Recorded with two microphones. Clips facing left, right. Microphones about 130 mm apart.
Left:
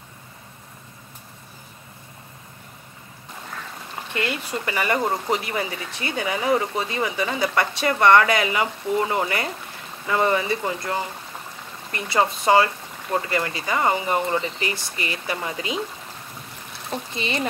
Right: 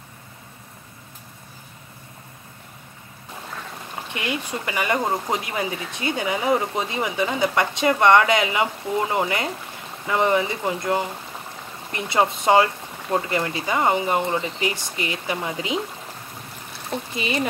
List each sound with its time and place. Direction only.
4.1 s speech: 15° right (ahead or behind)
16.9 s speech: 5° right (ahead or behind)